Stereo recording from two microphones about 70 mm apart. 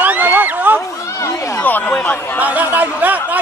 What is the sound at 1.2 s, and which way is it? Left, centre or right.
Speech, left.